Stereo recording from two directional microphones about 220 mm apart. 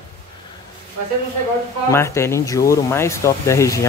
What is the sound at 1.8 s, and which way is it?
Speech, 10° left (ahead or behind).